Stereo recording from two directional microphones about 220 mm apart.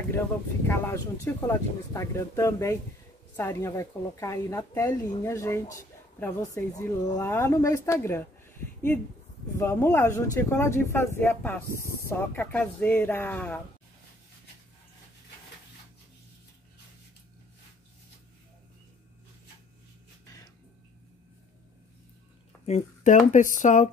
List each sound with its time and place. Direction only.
0.7 s a woman's voice: 10° left (ahead or behind)
22.7 s speech: 30° left (ahead or behind)